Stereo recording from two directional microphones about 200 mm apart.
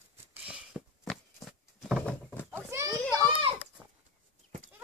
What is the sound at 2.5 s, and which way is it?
Children playing, 15° right (ahead or behind).